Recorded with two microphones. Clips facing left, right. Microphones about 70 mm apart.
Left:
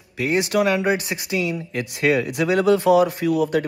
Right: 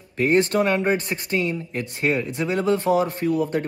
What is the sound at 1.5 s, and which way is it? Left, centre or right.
A man's voice, left.